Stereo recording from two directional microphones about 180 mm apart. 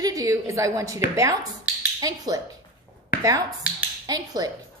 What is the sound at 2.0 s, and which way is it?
Speech, 20° right (ahead or behind).